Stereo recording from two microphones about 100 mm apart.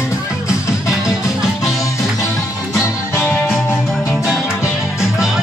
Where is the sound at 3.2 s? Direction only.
20° left (ahead or behind).